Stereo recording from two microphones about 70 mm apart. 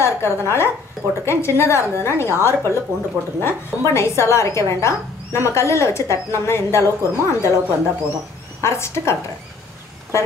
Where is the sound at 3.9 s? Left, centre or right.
Left.